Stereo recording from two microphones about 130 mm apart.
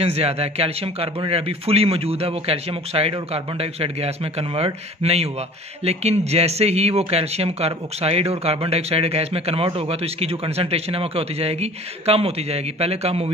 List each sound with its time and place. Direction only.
0.0 s speech: 50° right (ahead or behind)